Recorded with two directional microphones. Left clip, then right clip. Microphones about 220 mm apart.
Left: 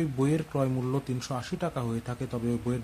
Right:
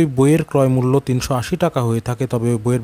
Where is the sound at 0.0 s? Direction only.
45° right (ahead or behind).